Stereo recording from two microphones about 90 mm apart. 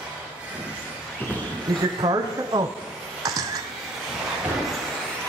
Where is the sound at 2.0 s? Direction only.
50° right (ahead or behind).